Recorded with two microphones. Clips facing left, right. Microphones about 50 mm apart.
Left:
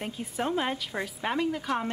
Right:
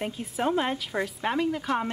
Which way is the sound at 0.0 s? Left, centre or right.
Centre.